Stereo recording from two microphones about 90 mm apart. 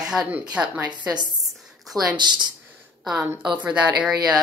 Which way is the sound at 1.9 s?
40° right (ahead or behind).